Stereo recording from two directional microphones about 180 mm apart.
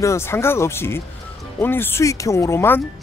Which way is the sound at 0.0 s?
15° left (ahead or behind).